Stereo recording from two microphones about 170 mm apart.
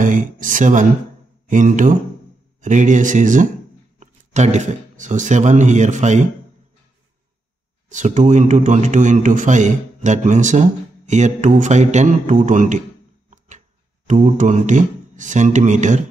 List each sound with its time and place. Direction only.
0.0 s a man's voice: 50° right (ahead or behind)
7.9 s a man's voice: 45° right (ahead or behind)